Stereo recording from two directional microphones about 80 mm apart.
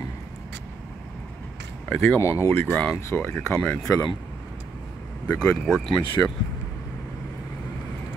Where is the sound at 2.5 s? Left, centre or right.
Left.